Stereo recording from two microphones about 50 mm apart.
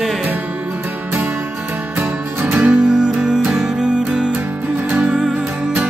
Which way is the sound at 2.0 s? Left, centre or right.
Right.